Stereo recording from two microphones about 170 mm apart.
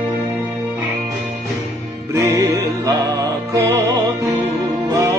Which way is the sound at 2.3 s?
20° right (ahead or behind).